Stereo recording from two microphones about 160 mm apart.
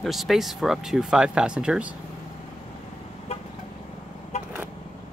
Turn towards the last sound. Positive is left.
turn(degrees=45)  # may be behind; listen again after turning